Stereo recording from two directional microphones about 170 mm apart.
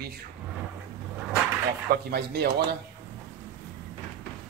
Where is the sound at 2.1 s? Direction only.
70° right (ahead or behind).